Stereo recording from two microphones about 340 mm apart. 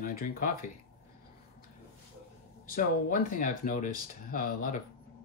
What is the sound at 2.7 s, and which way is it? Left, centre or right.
Speech, left.